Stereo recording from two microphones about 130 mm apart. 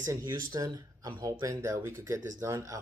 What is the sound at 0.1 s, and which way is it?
Speech, 25° right (ahead or behind).